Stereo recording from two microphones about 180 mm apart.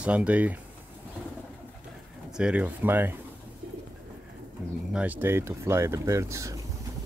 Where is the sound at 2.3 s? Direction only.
5° right (ahead or behind).